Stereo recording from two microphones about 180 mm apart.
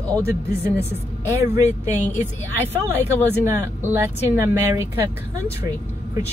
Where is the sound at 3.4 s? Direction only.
10° right (ahead or behind).